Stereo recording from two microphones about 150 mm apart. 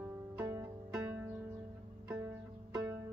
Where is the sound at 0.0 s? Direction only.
20° right (ahead or behind).